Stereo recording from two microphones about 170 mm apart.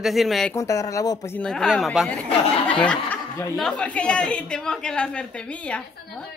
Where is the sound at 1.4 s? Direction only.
5° left (ahead or behind).